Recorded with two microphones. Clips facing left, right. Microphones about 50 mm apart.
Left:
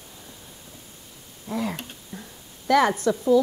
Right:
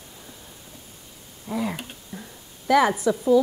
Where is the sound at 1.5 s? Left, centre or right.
Centre.